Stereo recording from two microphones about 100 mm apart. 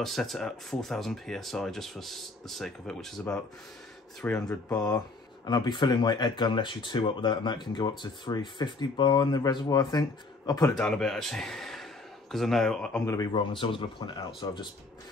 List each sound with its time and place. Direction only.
0.0 s speech: centre (ahead or behind)
4.7 s speech: 40° left (ahead or behind)
10.7 s speech: 5° left (ahead or behind)
13.3 s speech: 55° left (ahead or behind)